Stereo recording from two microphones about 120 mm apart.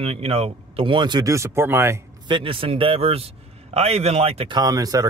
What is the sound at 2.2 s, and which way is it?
A man's voice, 45° right (ahead or behind).